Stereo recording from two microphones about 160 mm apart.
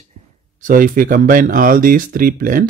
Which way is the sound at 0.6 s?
60° right (ahead or behind).